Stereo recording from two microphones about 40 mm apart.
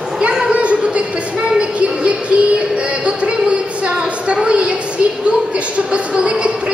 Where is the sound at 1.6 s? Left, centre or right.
Right.